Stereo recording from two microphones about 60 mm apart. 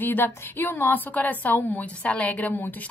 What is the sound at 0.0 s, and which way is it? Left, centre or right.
A woman's voice, left.